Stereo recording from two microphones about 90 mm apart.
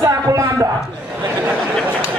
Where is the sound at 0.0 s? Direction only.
40° right (ahead or behind).